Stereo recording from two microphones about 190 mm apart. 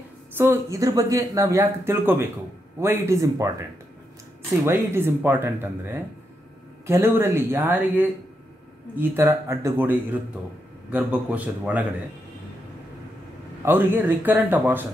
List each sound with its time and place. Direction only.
0.3 s speech: 10° right (ahead or behind)
4.6 s speech: 10° right (ahead or behind)
13.7 s speech: 10° right (ahead or behind)